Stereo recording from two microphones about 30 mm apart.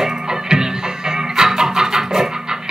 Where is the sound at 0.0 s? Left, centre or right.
Right.